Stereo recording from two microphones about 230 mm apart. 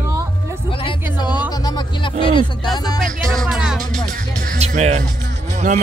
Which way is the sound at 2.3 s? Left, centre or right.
Centre.